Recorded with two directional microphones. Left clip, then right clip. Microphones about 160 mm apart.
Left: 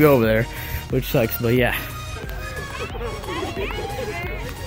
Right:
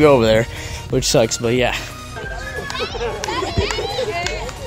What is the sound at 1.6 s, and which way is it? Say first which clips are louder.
Speech: right 1 dB; centre (ahead or behind).